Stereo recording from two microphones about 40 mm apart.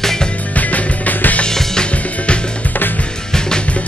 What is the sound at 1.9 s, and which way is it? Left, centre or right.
Music, left.